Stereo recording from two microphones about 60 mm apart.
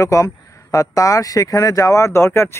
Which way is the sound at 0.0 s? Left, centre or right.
Left.